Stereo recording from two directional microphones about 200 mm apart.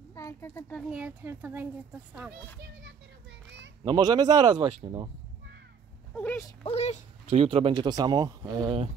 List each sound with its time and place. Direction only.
0.1 s a child's voice: 15° left (ahead or behind)
0.8 s speech: 5° right (ahead or behind)
2.6 s children playing: 60° right (ahead or behind)
3.8 s speech: 20° right (ahead or behind)
6.1 s a sound: 10° left (ahead or behind)
6.6 s speech: 30° left (ahead or behind)
7.2 s speech: 25° right (ahead or behind)